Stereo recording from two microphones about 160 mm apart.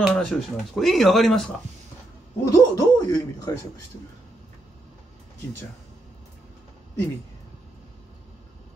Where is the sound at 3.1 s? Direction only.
25° left (ahead or behind).